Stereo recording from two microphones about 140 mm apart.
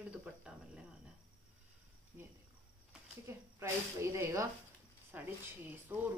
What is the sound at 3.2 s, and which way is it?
Speech, 20° right (ahead or behind).